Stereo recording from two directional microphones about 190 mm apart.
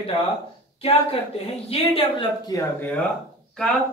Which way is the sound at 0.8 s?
30° left (ahead or behind).